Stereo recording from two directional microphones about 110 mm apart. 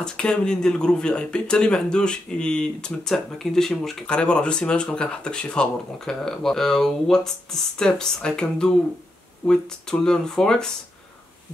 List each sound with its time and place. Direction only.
0.0 s speech: 5° left (ahead or behind)